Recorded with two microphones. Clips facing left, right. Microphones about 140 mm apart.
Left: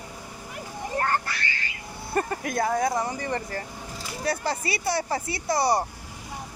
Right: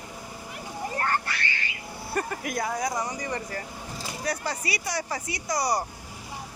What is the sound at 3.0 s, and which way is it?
Speech, 30° left (ahead or behind).